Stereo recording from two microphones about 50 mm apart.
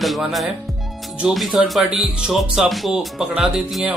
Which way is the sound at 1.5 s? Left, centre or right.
Centre.